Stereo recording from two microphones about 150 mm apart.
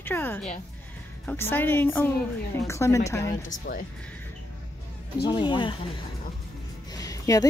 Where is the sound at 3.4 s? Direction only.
70° left (ahead or behind).